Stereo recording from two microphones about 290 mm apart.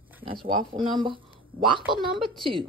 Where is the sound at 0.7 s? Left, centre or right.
Centre.